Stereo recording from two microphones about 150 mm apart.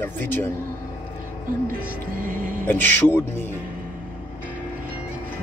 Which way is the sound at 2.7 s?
10° left (ahead or behind).